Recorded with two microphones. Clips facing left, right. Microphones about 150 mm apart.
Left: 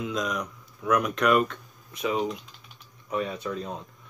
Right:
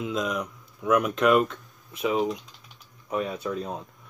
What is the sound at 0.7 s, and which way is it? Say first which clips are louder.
Speech: right 2 dB; 20° right (ahead or behind).